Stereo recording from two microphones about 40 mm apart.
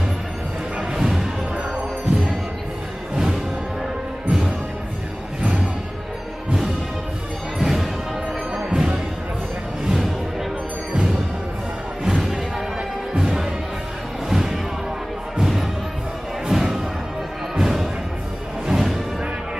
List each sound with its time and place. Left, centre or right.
0.7 s music: centre
4.3 s music: right
7.5 s music: centre
9.8 s music: centre
12.0 s music: centre